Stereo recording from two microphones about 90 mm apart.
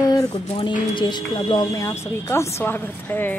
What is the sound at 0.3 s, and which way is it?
Speech, 70° left (ahead or behind).